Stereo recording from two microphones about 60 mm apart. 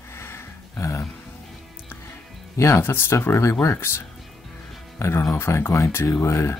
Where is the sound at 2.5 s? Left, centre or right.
Left.